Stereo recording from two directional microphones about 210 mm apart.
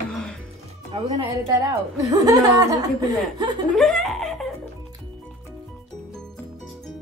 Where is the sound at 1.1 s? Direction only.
15° right (ahead or behind).